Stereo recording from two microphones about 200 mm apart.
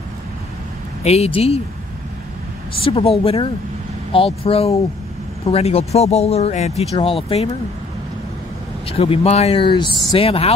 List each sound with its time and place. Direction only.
1.0 s speech: 30° left (ahead or behind)
2.8 s speech: 30° left (ahead or behind)
8.8 s speech: 30° left (ahead or behind)